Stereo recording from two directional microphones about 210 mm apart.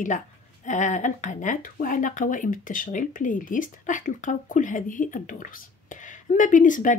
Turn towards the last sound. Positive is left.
turn(degrees=40)  # may be behind; listen again after turning